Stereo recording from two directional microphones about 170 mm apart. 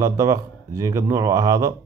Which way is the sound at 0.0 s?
20° right (ahead or behind).